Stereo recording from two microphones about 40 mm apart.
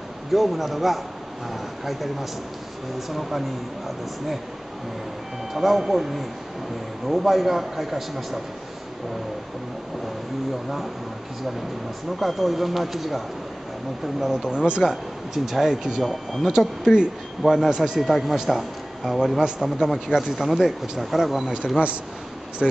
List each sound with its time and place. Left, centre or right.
0.3 s a man's voice: centre
5.5 s a man's voice: centre
12.2 s a man's voice: centre
14.2 s a man's voice: centre
14.5 s speech: right
14.8 s a man's voice: centre
16.1 s a man's voice: centre
16.4 s a man's voice: centre
17.4 s a man's voice: centre
17.6 s a man's voice: centre
22.6 s a man's voice: centre